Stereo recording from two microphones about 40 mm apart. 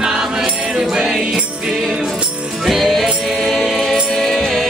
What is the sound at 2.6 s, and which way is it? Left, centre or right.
Music, centre.